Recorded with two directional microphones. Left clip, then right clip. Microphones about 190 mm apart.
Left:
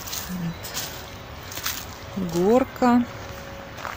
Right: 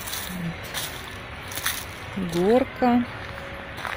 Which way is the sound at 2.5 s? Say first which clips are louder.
Left 1 dB; 15° left (ahead or behind).